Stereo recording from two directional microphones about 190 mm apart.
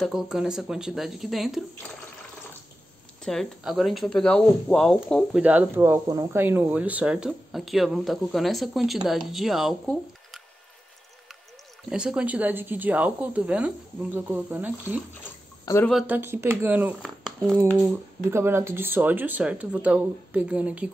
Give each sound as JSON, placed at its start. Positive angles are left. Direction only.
{"t": 0.0, "sound": "speech", "side_deg": 0}
{"t": 3.3, "sound": "speech", "side_deg": 0}
{"t": 5.4, "sound": "speech", "side_deg": -10}
{"t": 11.9, "sound": "a woman's voice", "side_deg": -5}
{"t": 15.6, "sound": "speech", "side_deg": 15}
{"t": 15.9, "sound": "a woman's voice", "side_deg": -5}
{"t": 18.3, "sound": "a woman's voice", "side_deg": -15}